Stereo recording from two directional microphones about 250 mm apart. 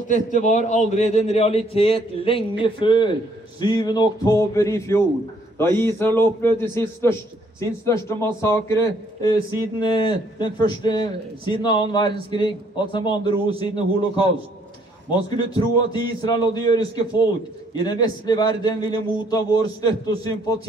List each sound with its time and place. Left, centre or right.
0.1 s a man's voice: left